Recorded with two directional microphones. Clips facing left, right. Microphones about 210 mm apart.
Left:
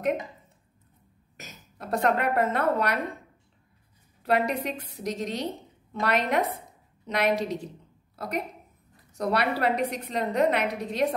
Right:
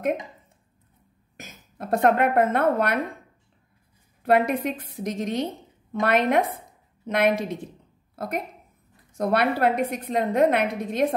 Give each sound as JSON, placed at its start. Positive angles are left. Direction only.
{"t": 1.3, "sound": "a woman's voice", "side_deg": -50}
{"t": 4.2, "sound": "a woman's voice", "side_deg": -50}
{"t": 9.1, "sound": "a woman's voice", "side_deg": -55}